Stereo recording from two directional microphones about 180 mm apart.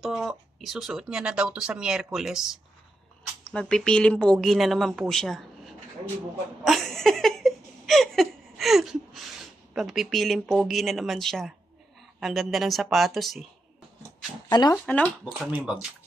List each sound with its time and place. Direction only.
0.0 s speech: centre (ahead or behind)
6.6 s a sound: centre (ahead or behind)
9.8 s speech: centre (ahead or behind)
14.5 s speech: 20° left (ahead or behind)
14.9 s speech: 5° left (ahead or behind)
15.5 s speech: 5° right (ahead or behind)